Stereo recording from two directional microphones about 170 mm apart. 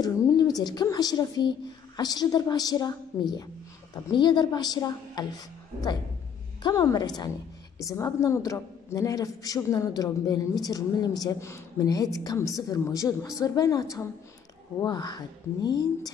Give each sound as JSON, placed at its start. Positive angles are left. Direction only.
{"t": 0.0, "sound": "a woman's voice", "side_deg": 20}
{"t": 6.6, "sound": "a woman's voice", "side_deg": 20}